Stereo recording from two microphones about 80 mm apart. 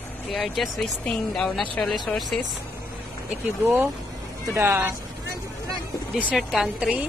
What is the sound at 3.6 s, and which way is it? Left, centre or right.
Speech, right.